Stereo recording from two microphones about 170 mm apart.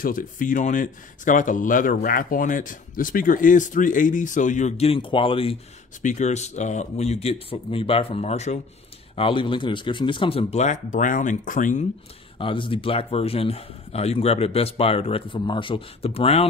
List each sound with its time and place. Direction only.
0.0 s speech: 50° left (ahead or behind); by 5.6 s 30° left (ahead or behind)
6.0 s speech: 45° left (ahead or behind)
12.4 s speech: 30° left (ahead or behind)